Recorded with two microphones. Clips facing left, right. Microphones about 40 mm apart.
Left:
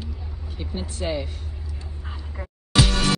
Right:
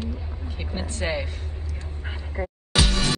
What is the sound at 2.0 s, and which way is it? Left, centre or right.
Quack, right.